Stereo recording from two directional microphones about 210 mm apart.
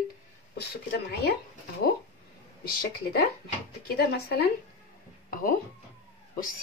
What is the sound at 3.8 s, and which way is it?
A child's voice, 50° left (ahead or behind).